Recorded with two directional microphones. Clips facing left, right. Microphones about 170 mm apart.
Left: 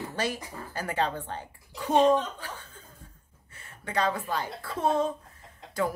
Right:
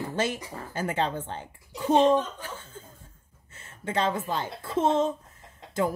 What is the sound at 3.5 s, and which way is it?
A woman's voice, 25° right (ahead or behind).